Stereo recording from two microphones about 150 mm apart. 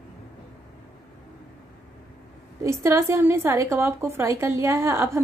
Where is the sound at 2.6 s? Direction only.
20° right (ahead or behind).